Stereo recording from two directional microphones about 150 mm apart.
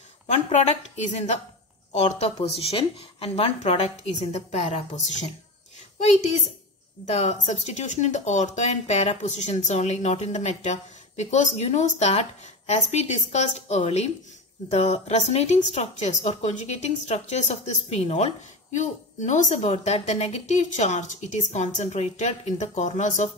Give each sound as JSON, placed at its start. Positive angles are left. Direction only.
{"t": 0.3, "sound": "speech", "side_deg": 50}